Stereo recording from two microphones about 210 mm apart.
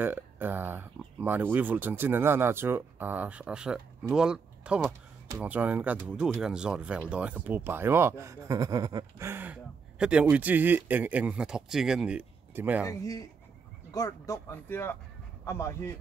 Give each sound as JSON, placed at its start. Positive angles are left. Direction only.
{"t": 0.0, "sound": "speech", "side_deg": -10}
{"t": 12.8, "sound": "speech", "side_deg": 15}